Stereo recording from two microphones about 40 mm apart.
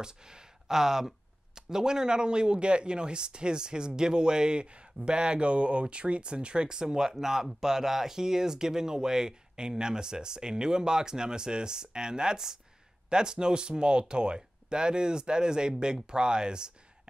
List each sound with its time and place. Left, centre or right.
0.0 s speech: centre